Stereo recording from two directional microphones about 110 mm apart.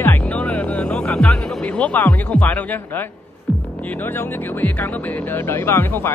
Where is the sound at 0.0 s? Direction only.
20° left (ahead or behind).